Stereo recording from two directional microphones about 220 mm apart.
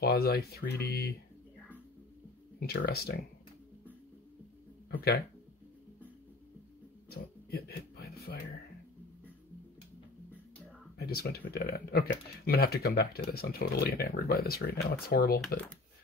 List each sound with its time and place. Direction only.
0.0 s speech: 45° left (ahead or behind)
2.6 s speech: 45° left (ahead or behind)
7.1 s a sound: 45° left (ahead or behind)
11.0 s speech: 45° left (ahead or behind)